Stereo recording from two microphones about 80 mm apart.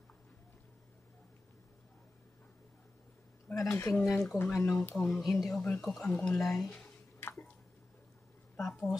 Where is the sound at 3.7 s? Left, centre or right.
Left.